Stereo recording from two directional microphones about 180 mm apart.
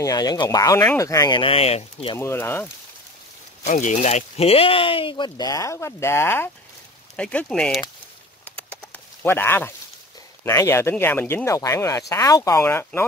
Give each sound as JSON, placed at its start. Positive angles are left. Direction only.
{"t": 0.0, "sound": "speech", "side_deg": 20}
{"t": 2.1, "sound": "speech", "side_deg": 15}
{"t": 3.6, "sound": "speech", "side_deg": 40}
{"t": 8.5, "sound": "a sound", "side_deg": 5}
{"t": 10.4, "sound": "speech", "side_deg": 15}